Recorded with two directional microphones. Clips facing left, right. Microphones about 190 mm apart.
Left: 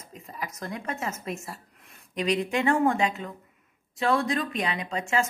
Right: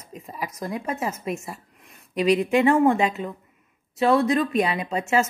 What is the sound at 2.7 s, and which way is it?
A woman's voice, 25° right (ahead or behind).